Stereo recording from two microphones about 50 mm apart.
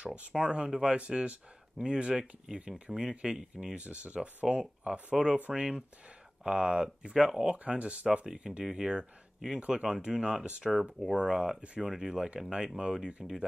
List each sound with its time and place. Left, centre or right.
0.0 s speech: right
3.7 s speech: right; by 7.5 s centre
7.5 s speech: right
8.3 s speech: centre
9.6 s speech: right
10.6 s speech: centre
11.1 s speech: centre